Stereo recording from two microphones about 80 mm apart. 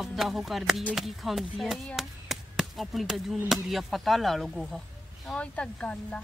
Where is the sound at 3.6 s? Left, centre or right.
Centre.